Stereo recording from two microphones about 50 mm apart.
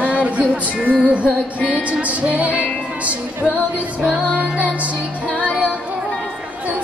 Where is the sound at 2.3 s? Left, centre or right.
Right.